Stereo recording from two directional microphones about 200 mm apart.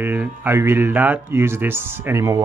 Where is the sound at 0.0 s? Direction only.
10° right (ahead or behind).